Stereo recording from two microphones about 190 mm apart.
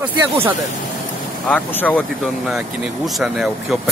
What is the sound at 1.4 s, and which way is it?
Speech, 5° left (ahead or behind).